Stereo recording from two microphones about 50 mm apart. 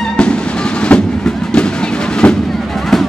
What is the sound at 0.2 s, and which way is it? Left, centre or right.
Music, left.